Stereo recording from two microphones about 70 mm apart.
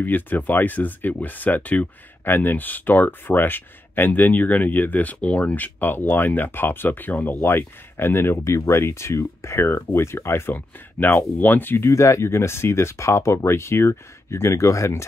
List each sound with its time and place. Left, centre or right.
0.0 s speech: left
11.9 s speech: left